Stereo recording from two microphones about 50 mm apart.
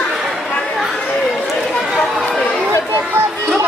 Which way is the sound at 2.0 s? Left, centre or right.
Centre.